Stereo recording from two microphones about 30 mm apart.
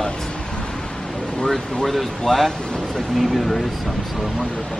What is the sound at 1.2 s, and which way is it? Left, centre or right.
Air conditioning, left.